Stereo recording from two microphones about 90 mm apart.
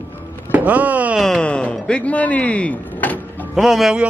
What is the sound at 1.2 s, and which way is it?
Speech, 10° left (ahead or behind).